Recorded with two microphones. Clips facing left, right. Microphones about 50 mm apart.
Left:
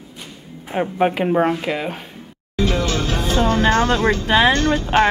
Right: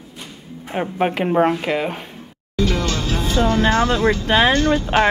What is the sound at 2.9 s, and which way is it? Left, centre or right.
Music, left.